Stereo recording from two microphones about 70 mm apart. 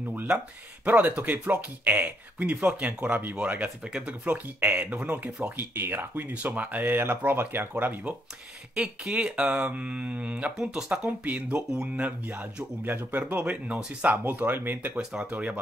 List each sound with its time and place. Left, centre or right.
0.0 s a sound: right
0.8 s speech: right
8.7 s speech: centre
11.1 s speech: right
15.0 s speech: centre